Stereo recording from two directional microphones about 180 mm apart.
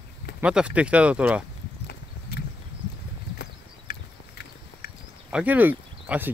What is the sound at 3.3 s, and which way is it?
Clip-clop, 55° left (ahead or behind).